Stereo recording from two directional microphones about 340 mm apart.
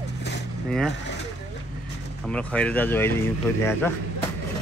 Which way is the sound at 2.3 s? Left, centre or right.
Centre.